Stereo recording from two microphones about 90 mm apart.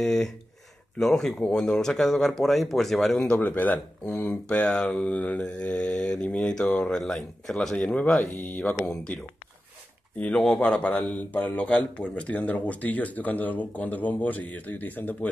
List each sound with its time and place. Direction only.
0.0 s speech: 5° left (ahead or behind)
3.2 s speech: 15° left (ahead or behind)